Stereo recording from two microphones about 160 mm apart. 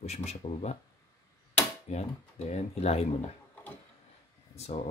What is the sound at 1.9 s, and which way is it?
Speech, 45° left (ahead or behind).